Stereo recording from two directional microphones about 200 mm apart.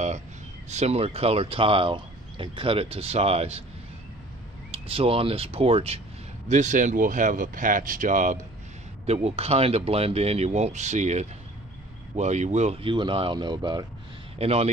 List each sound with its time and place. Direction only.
0.7 s speech: 35° right (ahead or behind)
4.6 s speech: 30° right (ahead or behind)
14.4 s speech: 30° right (ahead or behind)